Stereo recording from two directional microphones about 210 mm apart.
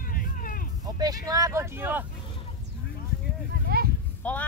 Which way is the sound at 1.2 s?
15° right (ahead or behind).